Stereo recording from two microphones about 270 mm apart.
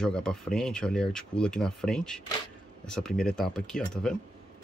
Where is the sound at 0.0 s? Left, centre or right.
Centre.